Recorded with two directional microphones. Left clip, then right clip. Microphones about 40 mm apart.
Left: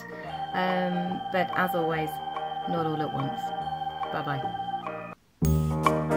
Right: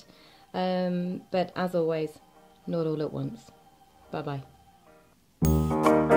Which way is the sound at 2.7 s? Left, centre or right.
Left.